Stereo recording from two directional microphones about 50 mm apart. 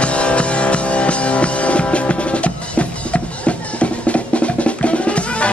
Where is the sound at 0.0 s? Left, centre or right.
Left.